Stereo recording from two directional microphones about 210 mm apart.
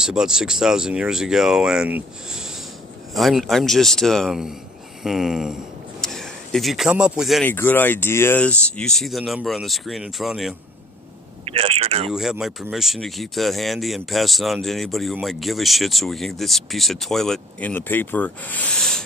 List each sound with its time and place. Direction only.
0.0 s speech: 5° right (ahead or behind)
7.4 s speech: 10° left (ahead or behind)
11.4 s a man's voice: 30° right (ahead or behind)
12.1 s speech: centre (ahead or behind)